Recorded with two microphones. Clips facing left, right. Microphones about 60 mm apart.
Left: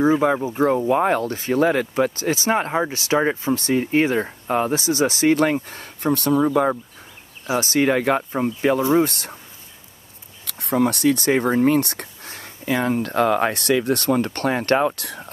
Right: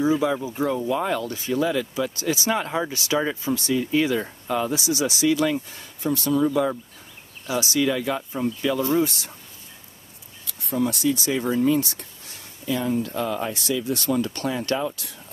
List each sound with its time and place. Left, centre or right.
0.0 s speech: left
6.4 s speech: left
10.4 s speech: left